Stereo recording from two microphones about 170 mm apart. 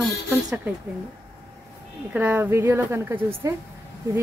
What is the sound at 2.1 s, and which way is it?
A woman's voice, 10° right (ahead or behind).